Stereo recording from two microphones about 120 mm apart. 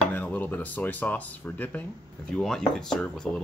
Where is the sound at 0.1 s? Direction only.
15° left (ahead or behind).